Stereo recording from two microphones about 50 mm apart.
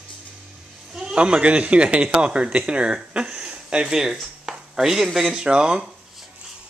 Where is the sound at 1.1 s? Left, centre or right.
Right.